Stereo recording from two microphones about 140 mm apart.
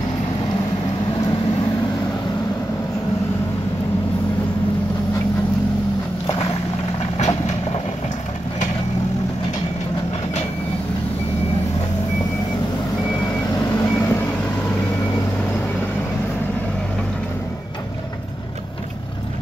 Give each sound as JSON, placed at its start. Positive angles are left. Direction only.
{"t": 7.0, "sound": "vehicle", "side_deg": 50}
{"t": 13.7, "sound": "vehicle", "side_deg": 20}